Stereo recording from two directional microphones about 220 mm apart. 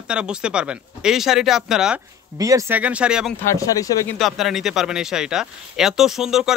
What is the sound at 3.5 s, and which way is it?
Speech, 15° left (ahead or behind).